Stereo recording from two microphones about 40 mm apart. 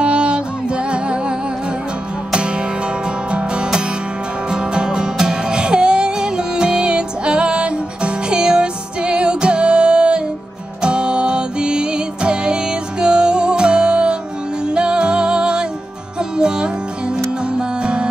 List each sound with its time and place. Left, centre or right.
0.0 s music: right
2.3 s music: right